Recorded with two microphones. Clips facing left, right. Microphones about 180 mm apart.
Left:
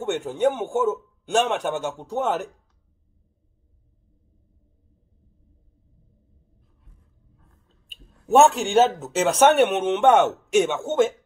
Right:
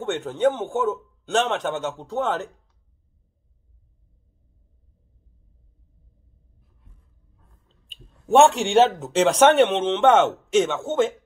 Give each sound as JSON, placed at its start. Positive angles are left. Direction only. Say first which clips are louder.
{"t": 0.0, "sound": "a man's voice", "louder": "even", "side_deg": 10}
{"t": 7.6, "sound": "speech", "louder": "right 2 dB", "side_deg": 5}